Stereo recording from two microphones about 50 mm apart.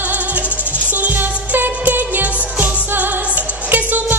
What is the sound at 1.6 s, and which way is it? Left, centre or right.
Music, right.